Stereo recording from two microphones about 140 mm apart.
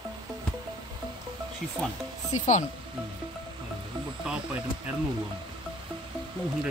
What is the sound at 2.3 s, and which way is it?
Speech, 60° left (ahead or behind).